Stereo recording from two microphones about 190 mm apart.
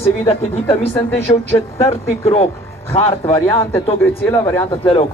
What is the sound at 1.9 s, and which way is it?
A man's voice, 30° left (ahead or behind).